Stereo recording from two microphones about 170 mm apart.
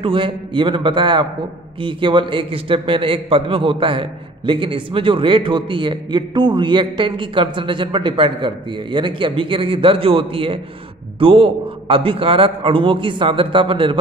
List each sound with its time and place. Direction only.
0.0 s a man's voice: 30° right (ahead or behind)